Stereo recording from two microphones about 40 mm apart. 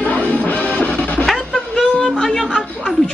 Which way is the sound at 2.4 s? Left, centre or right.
Centre.